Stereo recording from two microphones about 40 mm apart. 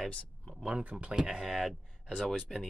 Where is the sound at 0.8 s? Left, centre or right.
Right.